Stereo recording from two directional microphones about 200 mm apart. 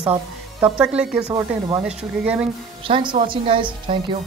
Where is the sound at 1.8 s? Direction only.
5° right (ahead or behind).